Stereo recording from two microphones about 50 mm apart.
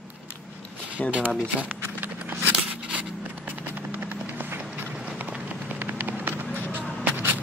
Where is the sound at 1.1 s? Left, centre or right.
Right.